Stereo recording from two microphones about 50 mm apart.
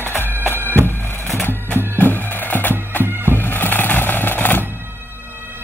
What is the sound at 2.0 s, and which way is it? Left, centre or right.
Music, left.